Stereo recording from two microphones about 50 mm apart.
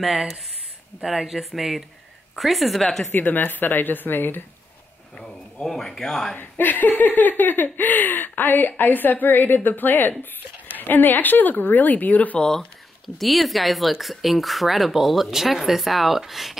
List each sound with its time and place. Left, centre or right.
1.0 s speech: centre
3.1 s speech: left
5.2 s speech: centre
6.3 s speech: left
12.4 s speech: centre